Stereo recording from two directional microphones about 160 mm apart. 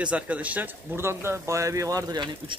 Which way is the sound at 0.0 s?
10° right (ahead or behind).